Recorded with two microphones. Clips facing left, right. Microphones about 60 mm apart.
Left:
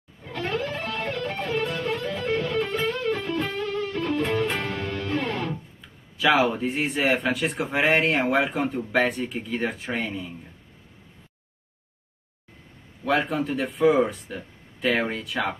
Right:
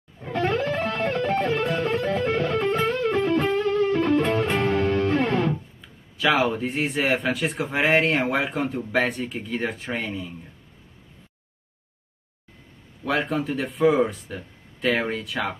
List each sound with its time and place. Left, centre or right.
0.2 s music: right
5.8 s speech: centre
13.0 s speech: centre